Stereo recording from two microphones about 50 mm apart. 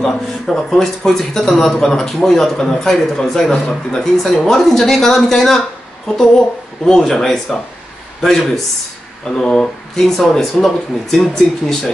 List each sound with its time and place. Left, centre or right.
0.0 s a man's voice: centre
4.0 s speech: centre
6.9 s a man's voice: centre
10.1 s speech: centre